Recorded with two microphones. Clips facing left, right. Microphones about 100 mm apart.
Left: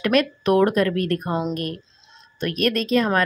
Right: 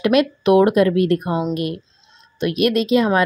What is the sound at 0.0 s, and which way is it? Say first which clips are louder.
Speech: right 4 dB; 15° right (ahead or behind).